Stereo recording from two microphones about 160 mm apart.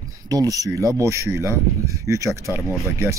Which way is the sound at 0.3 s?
20° right (ahead or behind).